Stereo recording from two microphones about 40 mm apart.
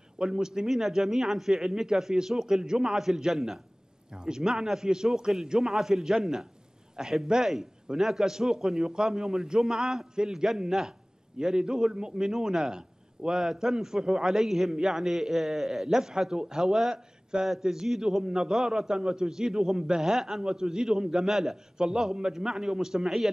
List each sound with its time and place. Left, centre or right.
0.2 s a man's voice: centre
11.3 s a man's voice: centre